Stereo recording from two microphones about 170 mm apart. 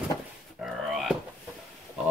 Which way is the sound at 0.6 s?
Centre (ahead or behind).